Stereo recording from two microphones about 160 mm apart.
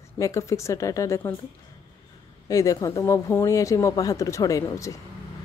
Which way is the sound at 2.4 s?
20° left (ahead or behind).